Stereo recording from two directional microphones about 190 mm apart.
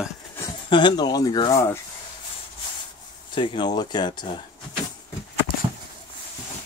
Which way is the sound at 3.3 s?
25° left (ahead or behind).